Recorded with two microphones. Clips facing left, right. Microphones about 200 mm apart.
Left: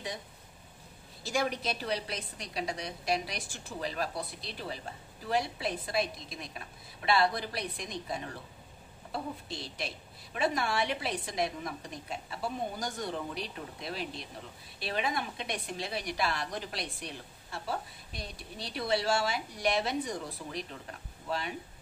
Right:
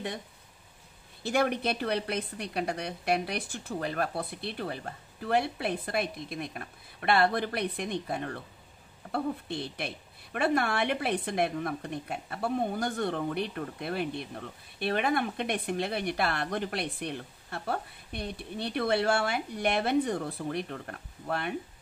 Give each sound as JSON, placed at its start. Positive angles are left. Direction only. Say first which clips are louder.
{"t": 1.2, "sound": "a woman's voice", "louder": "right 5 dB", "side_deg": -60}